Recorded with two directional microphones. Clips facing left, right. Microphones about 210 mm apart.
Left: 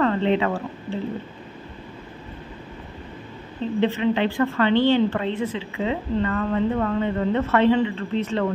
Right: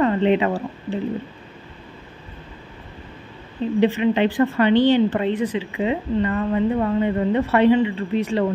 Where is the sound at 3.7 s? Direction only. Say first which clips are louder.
Right 3 dB; 15° right (ahead or behind).